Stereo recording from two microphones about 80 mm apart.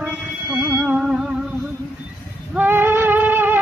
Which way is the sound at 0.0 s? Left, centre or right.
Centre.